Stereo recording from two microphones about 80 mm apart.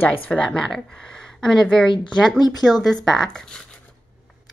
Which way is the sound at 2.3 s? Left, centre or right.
Left.